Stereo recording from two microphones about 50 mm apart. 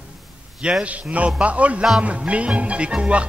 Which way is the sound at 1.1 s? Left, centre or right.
Right.